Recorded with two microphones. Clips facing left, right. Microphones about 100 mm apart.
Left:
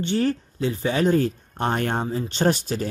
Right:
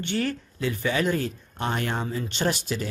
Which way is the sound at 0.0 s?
35° left (ahead or behind).